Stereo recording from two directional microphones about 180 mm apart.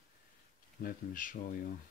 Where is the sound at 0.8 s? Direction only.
50° left (ahead or behind).